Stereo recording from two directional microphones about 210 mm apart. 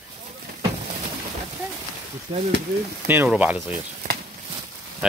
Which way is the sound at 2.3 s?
25° right (ahead or behind).